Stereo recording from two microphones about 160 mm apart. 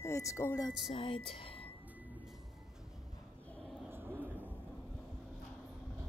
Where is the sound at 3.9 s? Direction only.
10° right (ahead or behind).